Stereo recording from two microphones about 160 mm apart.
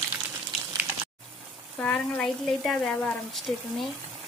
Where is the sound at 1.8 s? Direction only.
5° left (ahead or behind).